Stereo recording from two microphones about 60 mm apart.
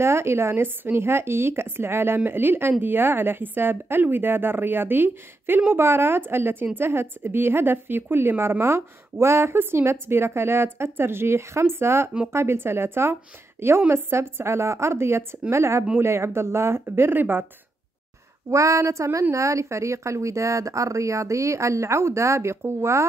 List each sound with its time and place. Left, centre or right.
0.0 s a woman's voice: right
18.5 s speech: right